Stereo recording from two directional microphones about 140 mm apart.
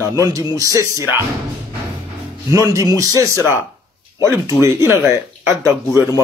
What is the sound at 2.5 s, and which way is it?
Speech, 25° right (ahead or behind).